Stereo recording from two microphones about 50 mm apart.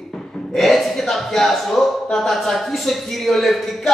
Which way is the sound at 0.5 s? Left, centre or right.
Centre.